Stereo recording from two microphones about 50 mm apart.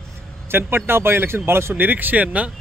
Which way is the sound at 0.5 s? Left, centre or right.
Right.